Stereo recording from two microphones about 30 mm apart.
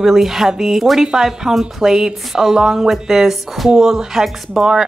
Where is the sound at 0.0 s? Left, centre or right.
Centre; by 2.9 s right.